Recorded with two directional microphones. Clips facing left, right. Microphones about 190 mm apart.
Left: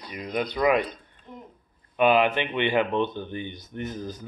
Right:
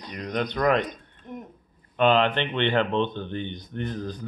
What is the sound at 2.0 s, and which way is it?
Speech, 10° left (ahead or behind).